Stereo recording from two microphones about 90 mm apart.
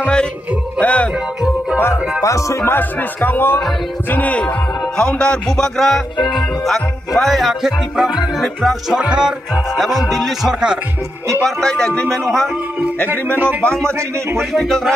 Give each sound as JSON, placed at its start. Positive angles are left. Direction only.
{"t": 0.7, "sound": "music", "side_deg": 15}
{"t": 2.2, "sound": "speech", "side_deg": 35}
{"t": 4.1, "sound": "music", "side_deg": 15}
{"t": 6.2, "sound": "speech", "side_deg": 0}
{"t": 9.0, "sound": "music", "side_deg": -10}
{"t": 9.8, "sound": "speech", "side_deg": 0}
{"t": 11.4, "sound": "music", "side_deg": 10}
{"t": 13.4, "sound": "speech", "side_deg": -25}
{"t": 14.4, "sound": "speech", "side_deg": 0}